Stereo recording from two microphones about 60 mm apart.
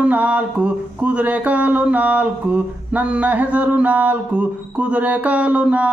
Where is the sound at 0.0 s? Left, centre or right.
Right.